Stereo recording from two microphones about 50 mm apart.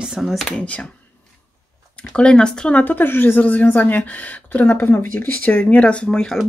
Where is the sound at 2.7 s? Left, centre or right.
Left.